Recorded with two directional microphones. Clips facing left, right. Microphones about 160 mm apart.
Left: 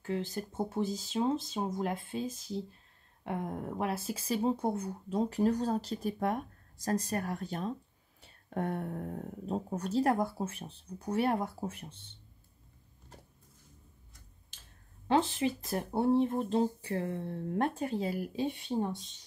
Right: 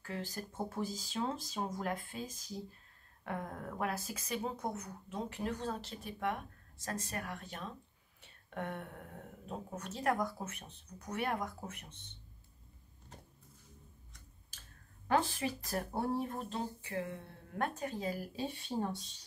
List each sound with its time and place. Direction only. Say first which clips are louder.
0.0 s speech: left 7 dB; 25° left (ahead or behind)
15.0 s speech: left 4 dB; 20° left (ahead or behind)